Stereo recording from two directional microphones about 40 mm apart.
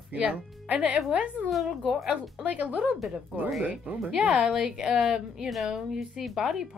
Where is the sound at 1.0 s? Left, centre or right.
Right.